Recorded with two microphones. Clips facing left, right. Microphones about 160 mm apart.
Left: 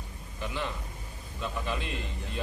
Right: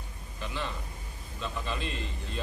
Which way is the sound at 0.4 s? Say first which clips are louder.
Left 2 dB; 15° left (ahead or behind).